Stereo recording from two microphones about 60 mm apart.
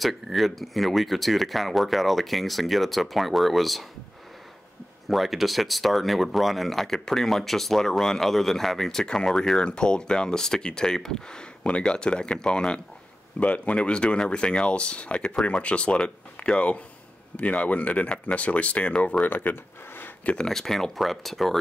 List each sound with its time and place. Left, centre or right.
0.0 s speech: centre
5.0 s speech: centre
19.2 s speech: left
20.2 s speech: centre